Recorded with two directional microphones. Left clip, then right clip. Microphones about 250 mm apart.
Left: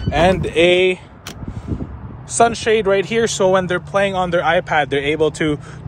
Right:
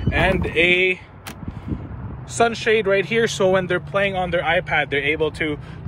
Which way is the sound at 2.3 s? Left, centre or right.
Centre.